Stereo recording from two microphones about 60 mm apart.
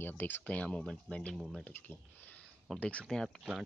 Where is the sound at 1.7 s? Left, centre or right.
Left.